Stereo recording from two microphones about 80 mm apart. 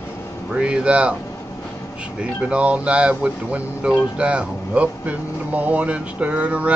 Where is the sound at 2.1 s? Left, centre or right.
Centre.